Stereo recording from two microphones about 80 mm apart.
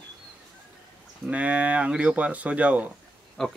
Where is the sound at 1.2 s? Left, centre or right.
Centre.